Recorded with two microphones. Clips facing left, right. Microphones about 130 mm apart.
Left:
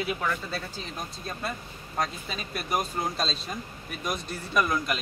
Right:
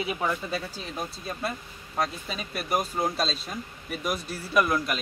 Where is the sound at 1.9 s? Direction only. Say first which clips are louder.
Right 1 dB; 5° right (ahead or behind).